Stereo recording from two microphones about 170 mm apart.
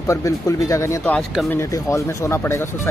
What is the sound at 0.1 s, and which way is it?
Speech, 20° left (ahead or behind).